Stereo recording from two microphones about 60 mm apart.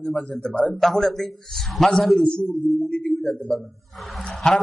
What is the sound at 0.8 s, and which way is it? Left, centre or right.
A man's voice, centre.